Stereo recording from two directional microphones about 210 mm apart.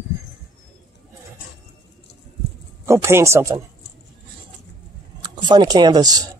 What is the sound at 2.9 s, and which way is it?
Speech, 10° right (ahead or behind).